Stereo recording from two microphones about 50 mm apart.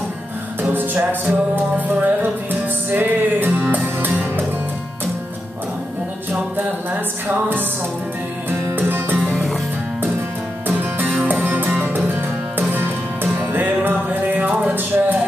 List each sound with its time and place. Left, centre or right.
0.6 s music: right
6.5 s music: right
8.7 s music: right
9.3 s music: centre
10.8 s music: right